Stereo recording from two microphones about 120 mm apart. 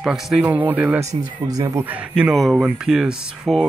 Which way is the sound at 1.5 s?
30° right (ahead or behind).